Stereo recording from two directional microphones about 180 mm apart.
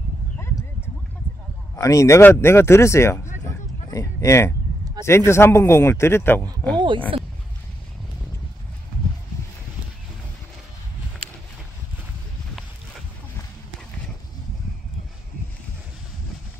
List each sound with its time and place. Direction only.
1.8 s speech: 15° left (ahead or behind)
3.4 s a sound: 15° left (ahead or behind)
5.0 s speech: 15° left (ahead or behind)